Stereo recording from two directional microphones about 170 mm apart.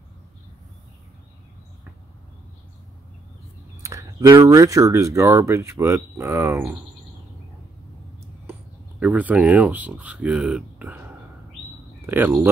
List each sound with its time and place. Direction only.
3.8 s a sound: 20° right (ahead or behind)
4.5 s speech: 20° right (ahead or behind)
9.0 s speech: 10° right (ahead or behind)
12.1 s speech: 15° right (ahead or behind)